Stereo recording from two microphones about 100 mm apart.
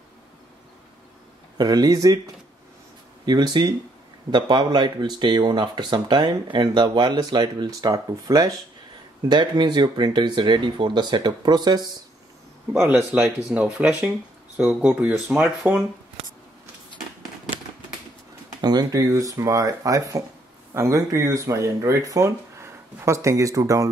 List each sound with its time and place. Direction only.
1.6 s speech: 40° right (ahead or behind)
3.3 s speech: 45° right (ahead or behind)
9.3 s speech: 50° right (ahead or behind)
12.8 s speech: 10° right (ahead or behind)
18.6 s speech: 40° right (ahead or behind)